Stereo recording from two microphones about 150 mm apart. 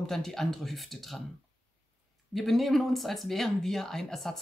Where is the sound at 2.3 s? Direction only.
Centre (ahead or behind).